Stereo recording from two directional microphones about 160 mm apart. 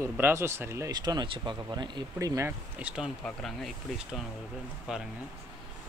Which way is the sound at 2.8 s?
5° right (ahead or behind).